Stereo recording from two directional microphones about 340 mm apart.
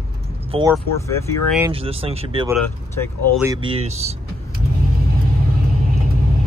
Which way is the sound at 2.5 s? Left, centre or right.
Centre.